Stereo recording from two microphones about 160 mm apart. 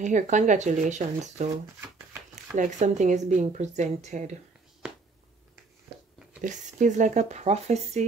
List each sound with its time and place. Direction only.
0.0 s a woman's voice: 50° right (ahead or behind)
2.5 s a woman's voice: 50° right (ahead or behind)
6.4 s a woman's voice: 50° right (ahead or behind)